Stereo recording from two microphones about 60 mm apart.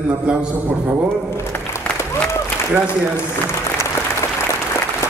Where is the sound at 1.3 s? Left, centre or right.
Left.